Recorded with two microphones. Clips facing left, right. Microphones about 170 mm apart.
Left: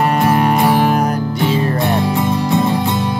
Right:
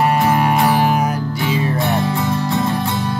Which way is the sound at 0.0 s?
5° right (ahead or behind).